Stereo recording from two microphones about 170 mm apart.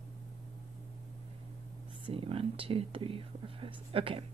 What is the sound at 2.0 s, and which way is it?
Speech, 35° right (ahead or behind).